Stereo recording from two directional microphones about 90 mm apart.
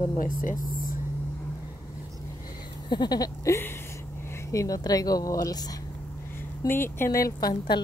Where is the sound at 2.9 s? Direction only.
50° left (ahead or behind).